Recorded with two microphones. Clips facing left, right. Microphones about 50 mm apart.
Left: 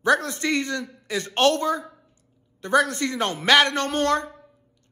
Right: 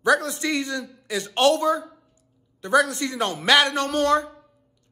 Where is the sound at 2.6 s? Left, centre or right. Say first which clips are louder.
Even; left.